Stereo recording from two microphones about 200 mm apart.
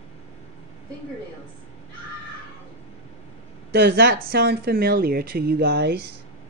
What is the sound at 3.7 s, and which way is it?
Speech, 55° right (ahead or behind).